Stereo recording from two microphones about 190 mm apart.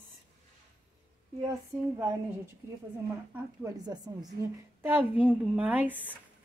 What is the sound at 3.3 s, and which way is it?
Speech, 15° right (ahead or behind).